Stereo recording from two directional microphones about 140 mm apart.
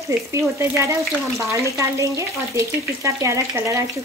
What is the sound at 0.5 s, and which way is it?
Speech, 20° right (ahead or behind).